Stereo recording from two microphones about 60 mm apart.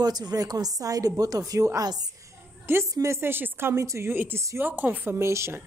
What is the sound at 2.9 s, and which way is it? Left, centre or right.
Speech, right.